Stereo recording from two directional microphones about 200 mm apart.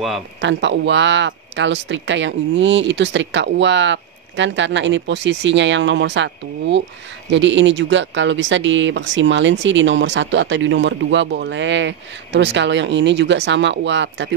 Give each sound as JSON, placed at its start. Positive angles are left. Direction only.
{"t": 0.4, "sound": "speech", "side_deg": -65}